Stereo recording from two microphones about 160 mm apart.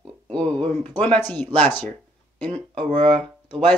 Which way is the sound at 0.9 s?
10° left (ahead or behind).